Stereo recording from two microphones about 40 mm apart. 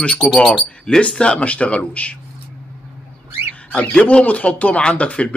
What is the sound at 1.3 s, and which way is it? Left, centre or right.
Speech, left.